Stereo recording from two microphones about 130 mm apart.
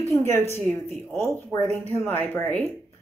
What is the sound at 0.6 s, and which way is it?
Speech, centre (ahead or behind).